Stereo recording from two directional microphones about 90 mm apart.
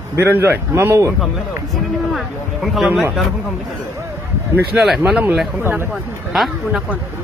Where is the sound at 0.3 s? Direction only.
25° right (ahead or behind).